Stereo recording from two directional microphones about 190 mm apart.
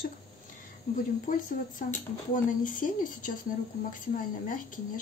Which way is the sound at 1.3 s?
45° left (ahead or behind).